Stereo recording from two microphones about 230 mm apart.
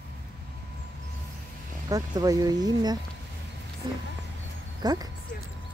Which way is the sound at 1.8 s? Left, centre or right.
Centre.